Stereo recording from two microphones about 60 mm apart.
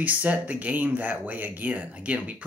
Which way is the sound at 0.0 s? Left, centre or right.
Right.